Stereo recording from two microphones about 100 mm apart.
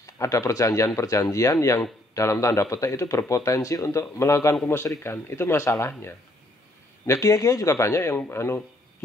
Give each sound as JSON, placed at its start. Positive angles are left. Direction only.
{"t": 0.0, "sound": "speech", "side_deg": 30}
{"t": 7.1, "sound": "speech", "side_deg": 35}